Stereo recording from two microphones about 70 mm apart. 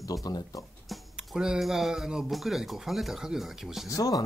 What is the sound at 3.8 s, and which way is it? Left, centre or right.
Speech, left.